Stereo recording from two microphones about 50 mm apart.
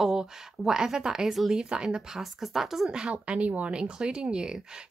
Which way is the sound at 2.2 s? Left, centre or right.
Centre.